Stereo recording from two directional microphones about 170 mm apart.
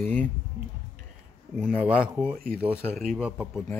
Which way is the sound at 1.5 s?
5° right (ahead or behind).